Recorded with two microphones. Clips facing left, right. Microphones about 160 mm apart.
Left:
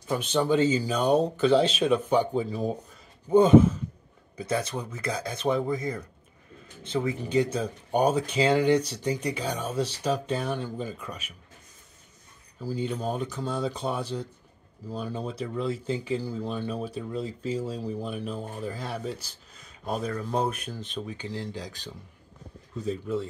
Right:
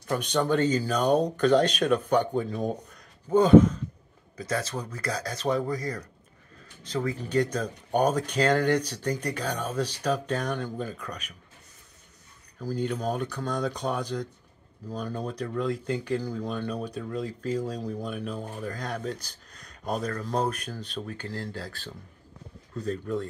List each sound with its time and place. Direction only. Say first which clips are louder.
0.1 s speech: left 1 dB; 5° left (ahead or behind)
5.5 s speech: left 1 dB; 25° left (ahead or behind)
7.0 s speech: left 1 dB; 10° left (ahead or behind)
12.5 s speech: right 1 dB; 10° left (ahead or behind)
22.8 s speech: even; 5° left (ahead or behind)